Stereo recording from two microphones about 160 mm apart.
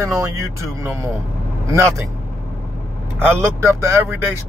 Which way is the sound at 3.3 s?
15° right (ahead or behind).